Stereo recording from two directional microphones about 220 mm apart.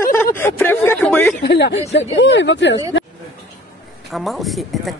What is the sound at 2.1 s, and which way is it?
Speech, 55° left (ahead or behind).